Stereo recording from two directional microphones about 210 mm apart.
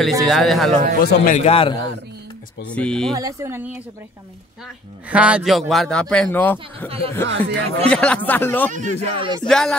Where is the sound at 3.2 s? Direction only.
15° right (ahead or behind).